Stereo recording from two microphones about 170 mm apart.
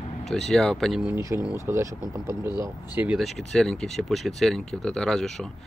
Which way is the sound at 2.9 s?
5° right (ahead or behind).